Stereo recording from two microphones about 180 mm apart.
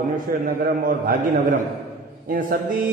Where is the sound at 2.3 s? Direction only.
50° right (ahead or behind).